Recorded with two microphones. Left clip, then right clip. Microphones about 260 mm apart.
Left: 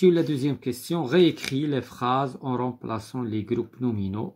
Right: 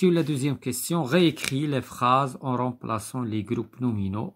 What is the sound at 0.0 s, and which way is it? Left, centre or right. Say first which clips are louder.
Speech: left 3 dB; right.